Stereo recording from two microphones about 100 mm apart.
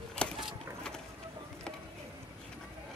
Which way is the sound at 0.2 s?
10° left (ahead or behind).